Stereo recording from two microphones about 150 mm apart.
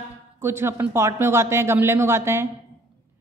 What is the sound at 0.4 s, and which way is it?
A woman's voice, 15° right (ahead or behind).